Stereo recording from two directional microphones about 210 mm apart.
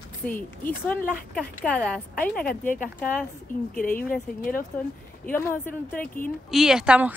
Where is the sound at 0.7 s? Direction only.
5° left (ahead or behind).